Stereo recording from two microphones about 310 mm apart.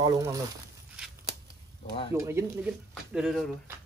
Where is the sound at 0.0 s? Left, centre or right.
Centre.